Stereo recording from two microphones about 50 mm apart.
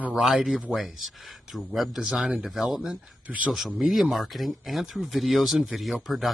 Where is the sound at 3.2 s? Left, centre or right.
Right.